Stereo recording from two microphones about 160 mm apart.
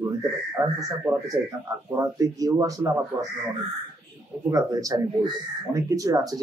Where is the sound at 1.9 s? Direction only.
20° right (ahead or behind).